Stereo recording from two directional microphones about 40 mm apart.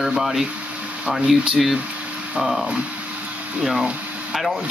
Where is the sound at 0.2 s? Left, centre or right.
Centre.